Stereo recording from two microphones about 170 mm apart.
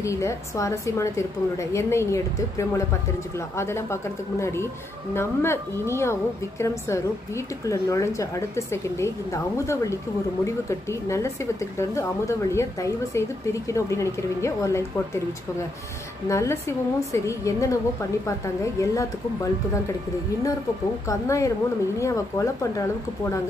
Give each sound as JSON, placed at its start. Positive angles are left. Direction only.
{"t": 0.0, "sound": "a woman's voice", "side_deg": 15}
{"t": 16.3, "sound": "a woman's voice", "side_deg": 15}
{"t": 21.1, "sound": "a woman's voice", "side_deg": 20}